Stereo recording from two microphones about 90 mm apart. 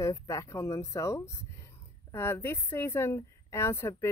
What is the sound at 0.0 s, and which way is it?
A woman's voice, 35° left (ahead or behind).